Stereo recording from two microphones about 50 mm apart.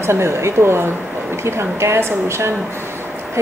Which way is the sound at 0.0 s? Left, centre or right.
Right.